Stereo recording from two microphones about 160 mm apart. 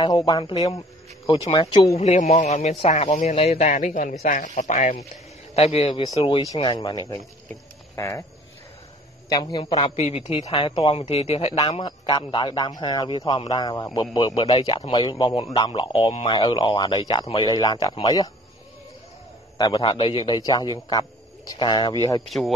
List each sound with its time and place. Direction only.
0.0 s speech: 25° left (ahead or behind)
2.0 s speech: 45° left (ahead or behind)
5.6 s a woman's voice: 40° left (ahead or behind); by 8.3 s 20° left (ahead or behind)
9.3 s a woman's voice: 25° left (ahead or behind)
19.6 s speech: 30° left (ahead or behind)
22.2 s speech: centre (ahead or behind)